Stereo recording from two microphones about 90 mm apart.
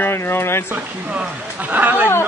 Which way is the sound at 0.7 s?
15° right (ahead or behind).